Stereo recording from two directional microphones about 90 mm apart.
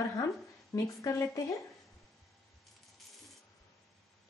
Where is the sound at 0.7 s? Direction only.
35° left (ahead or behind).